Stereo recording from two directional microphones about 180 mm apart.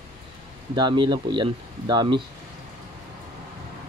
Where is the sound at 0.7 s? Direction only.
25° right (ahead or behind).